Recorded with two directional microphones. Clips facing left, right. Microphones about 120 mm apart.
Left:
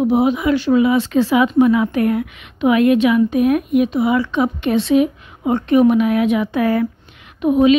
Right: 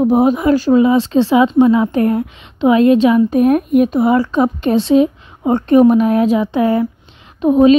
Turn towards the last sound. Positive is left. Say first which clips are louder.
# right 3 dB
turn(degrees=-35)  # may be behind; listen again after turning